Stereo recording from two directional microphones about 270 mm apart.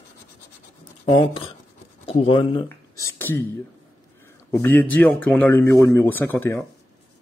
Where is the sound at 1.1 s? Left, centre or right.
Centre.